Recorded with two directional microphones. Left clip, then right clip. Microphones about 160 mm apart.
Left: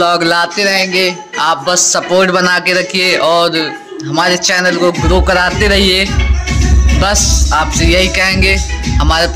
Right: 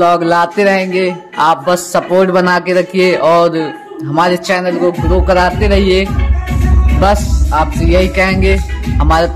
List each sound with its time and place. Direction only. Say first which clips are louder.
0.0 s speech: right 1 dB; 15° right (ahead or behind)
0.6 s a sound: even; 45° right (ahead or behind)
2.1 s a man's voice: even; 20° right (ahead or behind)
4.5 s music: left 2 dB; 10° right (ahead or behind); by 5.7 s 5° left (ahead or behind)
5.7 s music: left 1 dB; 5° right (ahead or behind)
7.5 s a man's voice: even; 5° right (ahead or behind); by 9.3 s 25° right (ahead or behind)